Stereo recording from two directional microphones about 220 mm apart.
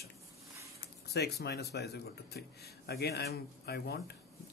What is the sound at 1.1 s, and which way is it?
A man's voice, 50° left (ahead or behind).